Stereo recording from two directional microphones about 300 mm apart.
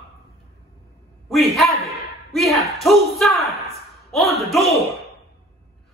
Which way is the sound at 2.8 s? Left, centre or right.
Centre.